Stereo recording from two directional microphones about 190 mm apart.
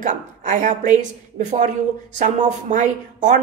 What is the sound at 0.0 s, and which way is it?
Speech, 40° right (ahead or behind).